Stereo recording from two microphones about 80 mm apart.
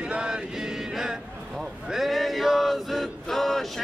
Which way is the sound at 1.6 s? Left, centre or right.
Centre.